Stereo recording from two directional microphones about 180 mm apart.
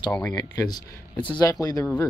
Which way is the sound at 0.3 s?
20° left (ahead or behind).